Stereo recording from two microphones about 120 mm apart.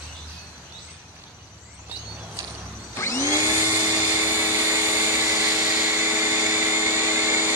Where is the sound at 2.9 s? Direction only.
25° left (ahead or behind).